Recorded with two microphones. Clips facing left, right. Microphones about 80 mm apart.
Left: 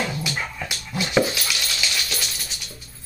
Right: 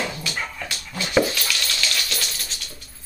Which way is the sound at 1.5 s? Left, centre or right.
Centre.